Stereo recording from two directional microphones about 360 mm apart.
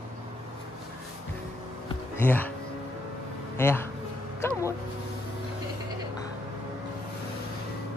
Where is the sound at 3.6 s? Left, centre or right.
Centre.